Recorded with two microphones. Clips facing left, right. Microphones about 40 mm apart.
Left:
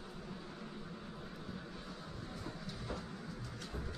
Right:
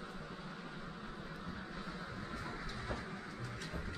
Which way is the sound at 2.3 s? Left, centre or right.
Right.